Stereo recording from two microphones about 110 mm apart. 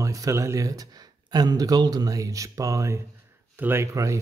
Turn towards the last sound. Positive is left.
turn(degrees=-30)  # may be behind; listen again after turning